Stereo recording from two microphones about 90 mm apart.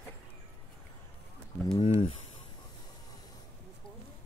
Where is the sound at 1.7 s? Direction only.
90° left.